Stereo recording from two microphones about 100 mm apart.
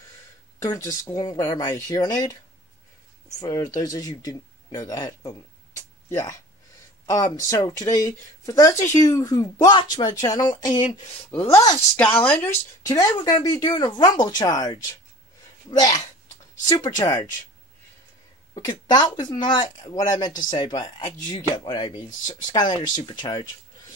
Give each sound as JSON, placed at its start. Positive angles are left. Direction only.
{"t": 0.6, "sound": "speech", "side_deg": 35}
{"t": 3.3, "sound": "speech", "side_deg": 35}
{"t": 9.0, "sound": "speech", "side_deg": 40}
{"t": 12.0, "sound": "speech", "side_deg": 15}
{"t": 12.8, "sound": "speech", "side_deg": 35}
{"t": 18.6, "sound": "speech", "side_deg": 40}